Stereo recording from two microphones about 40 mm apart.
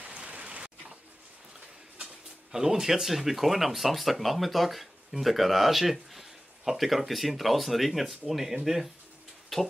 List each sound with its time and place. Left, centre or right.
0.0 s rain: right
2.5 s speech: centre
9.5 s music: centre